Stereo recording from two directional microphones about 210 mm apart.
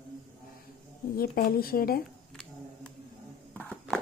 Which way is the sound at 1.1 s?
45° left (ahead or behind).